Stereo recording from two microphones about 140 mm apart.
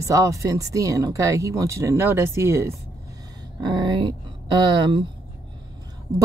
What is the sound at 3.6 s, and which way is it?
Speech, 35° right (ahead or behind).